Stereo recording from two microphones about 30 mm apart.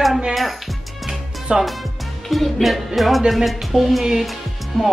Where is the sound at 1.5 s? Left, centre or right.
Right.